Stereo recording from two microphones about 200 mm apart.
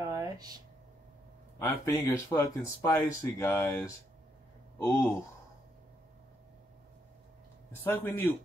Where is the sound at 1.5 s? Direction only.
10° left (ahead or behind).